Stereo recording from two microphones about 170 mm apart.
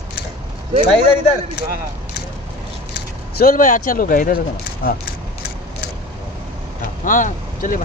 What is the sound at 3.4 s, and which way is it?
Speech, 55° left (ahead or behind).